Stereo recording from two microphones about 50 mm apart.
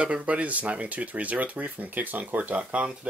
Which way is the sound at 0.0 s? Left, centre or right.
Right.